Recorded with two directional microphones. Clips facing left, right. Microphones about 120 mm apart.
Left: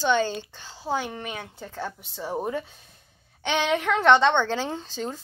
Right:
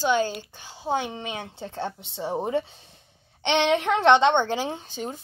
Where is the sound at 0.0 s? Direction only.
10° right (ahead or behind).